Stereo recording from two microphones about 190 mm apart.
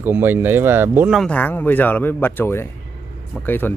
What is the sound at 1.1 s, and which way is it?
Speech, 5° left (ahead or behind).